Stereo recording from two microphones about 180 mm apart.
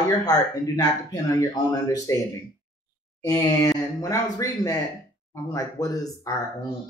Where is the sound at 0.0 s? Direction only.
20° left (ahead or behind).